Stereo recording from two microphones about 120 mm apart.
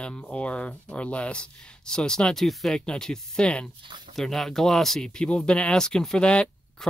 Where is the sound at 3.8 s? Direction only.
40° right (ahead or behind).